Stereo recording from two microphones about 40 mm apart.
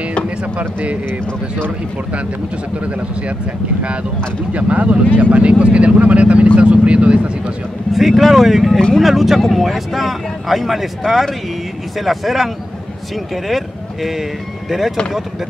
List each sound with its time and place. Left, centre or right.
0.6 s speech: right
4.6 s speech: right
7.9 s speech: centre
13.5 s speech: centre